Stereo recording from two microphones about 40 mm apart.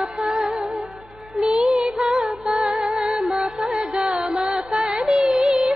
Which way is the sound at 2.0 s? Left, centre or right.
Centre.